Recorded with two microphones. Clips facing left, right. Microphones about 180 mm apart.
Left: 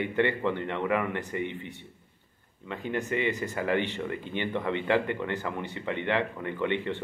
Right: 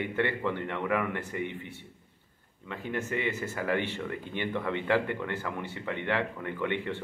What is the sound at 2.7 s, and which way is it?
Speech, 15° left (ahead or behind).